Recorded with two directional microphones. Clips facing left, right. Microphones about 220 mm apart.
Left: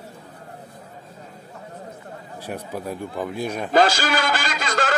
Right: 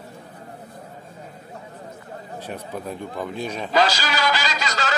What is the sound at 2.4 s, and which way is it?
A man's voice, 10° left (ahead or behind).